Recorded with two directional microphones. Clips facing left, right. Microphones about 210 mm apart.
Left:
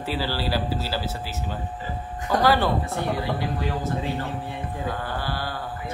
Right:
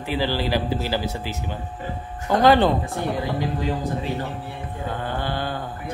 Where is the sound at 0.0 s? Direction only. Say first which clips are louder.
Right 3 dB; 15° right (ahead or behind).